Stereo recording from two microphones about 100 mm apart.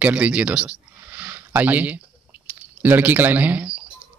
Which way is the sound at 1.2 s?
15° right (ahead or behind).